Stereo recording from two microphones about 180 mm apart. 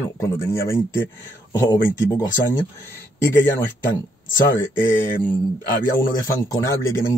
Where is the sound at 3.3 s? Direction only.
10° left (ahead or behind).